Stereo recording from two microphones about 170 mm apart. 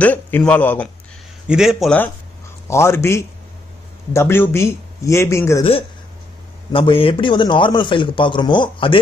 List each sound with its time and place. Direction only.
0.0 s speech: 10° left (ahead or behind)
1.5 s speech: 5° right (ahead or behind)
2.7 s speech: 15° left (ahead or behind)
5.6 s speech: 35° left (ahead or behind)